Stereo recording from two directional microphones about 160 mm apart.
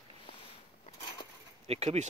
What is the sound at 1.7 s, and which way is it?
Speech, 40° right (ahead or behind).